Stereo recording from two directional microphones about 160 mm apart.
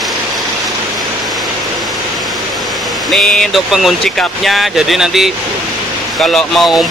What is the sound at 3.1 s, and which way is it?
Speech, 5° left (ahead or behind).